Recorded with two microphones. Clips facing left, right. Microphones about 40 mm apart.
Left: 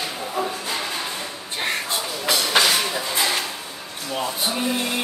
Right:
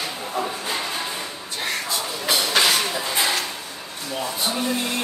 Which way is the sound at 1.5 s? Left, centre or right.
Left.